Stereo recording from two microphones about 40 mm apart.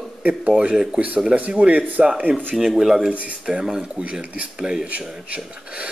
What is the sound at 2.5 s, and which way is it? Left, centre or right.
Speech, centre.